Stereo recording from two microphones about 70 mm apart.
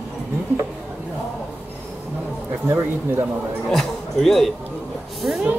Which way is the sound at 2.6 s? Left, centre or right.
Right.